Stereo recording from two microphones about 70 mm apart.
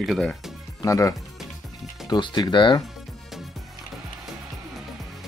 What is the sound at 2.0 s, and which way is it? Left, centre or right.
Speech, left.